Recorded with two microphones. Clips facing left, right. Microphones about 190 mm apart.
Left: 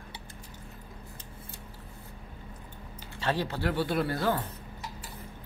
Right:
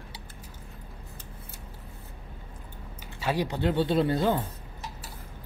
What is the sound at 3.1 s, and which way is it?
Speech, 10° right (ahead or behind).